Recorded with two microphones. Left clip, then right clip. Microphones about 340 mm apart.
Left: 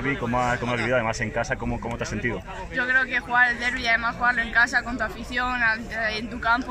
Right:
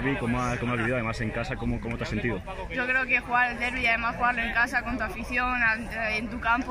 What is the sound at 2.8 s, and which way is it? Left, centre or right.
Speech, centre.